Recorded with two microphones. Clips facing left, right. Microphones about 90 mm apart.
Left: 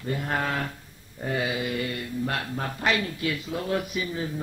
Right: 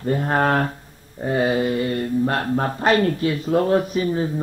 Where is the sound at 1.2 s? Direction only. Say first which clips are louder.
Right 8 dB; 35° right (ahead or behind).